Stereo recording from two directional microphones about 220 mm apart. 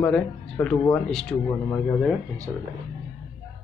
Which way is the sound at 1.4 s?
15° left (ahead or behind).